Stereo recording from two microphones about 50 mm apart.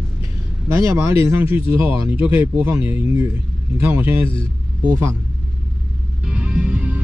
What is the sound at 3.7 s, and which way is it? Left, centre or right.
Speech, right.